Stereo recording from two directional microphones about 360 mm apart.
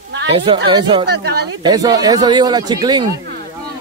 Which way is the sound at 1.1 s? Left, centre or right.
Right.